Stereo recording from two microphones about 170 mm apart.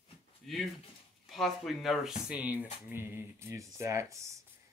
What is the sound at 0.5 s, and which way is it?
Speech, centre (ahead or behind).